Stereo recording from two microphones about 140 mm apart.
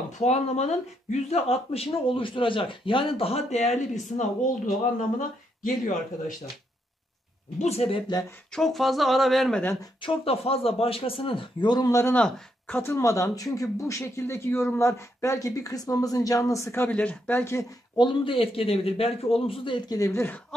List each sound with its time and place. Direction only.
0.2 s speech: 50° left (ahead or behind); by 6.3 s 70° left (ahead or behind)
7.6 s speech: 45° left (ahead or behind)
8.5 s speech: centre (ahead or behind)
10.0 s a man's voice: 45° left (ahead or behind); by 12.2 s 20° left (ahead or behind)
12.2 s speech: 10° left (ahead or behind)
12.9 s speech: 20° left (ahead or behind)
17.9 s a man's voice: 35° left (ahead or behind); by 20.3 s 20° left (ahead or behind)